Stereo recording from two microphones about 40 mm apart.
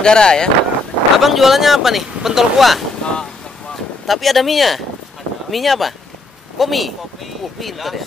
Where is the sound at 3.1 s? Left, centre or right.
Centre.